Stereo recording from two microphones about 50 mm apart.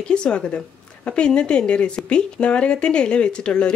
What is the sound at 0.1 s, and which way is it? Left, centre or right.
Speech, left.